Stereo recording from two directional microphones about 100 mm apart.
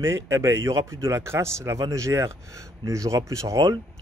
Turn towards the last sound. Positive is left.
turn(degrees=-30)  # may be behind; listen again after turning